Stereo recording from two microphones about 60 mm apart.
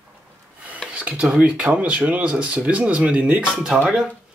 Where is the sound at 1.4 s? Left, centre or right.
Centre.